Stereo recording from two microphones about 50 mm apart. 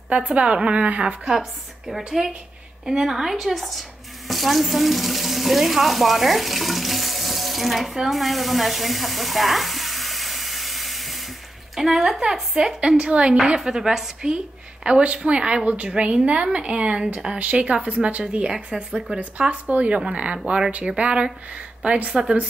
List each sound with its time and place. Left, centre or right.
0.1 s a woman's voice: right
1.3 s a woman's voice: centre
12.5 s a woman's voice: centre